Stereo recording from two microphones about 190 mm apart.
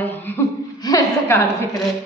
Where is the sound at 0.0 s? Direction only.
10° left (ahead or behind).